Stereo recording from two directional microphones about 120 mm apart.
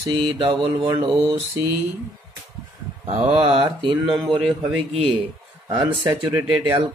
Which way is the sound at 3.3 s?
45° right (ahead or behind).